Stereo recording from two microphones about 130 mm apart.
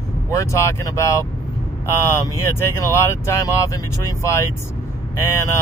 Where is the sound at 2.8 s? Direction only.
25° left (ahead or behind).